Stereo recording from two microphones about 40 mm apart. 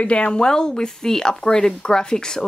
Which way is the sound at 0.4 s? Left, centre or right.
Centre.